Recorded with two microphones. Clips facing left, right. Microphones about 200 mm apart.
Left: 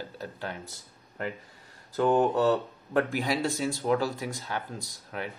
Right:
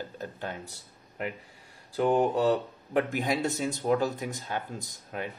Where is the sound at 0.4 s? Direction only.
15° right (ahead or behind).